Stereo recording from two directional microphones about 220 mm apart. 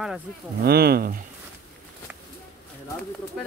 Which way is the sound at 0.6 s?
45° right (ahead or behind).